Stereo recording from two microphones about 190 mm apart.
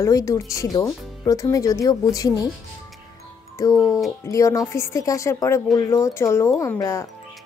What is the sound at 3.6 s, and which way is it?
Speech, 15° left (ahead or behind).